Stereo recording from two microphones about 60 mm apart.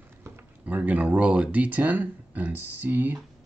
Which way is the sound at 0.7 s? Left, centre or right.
Right.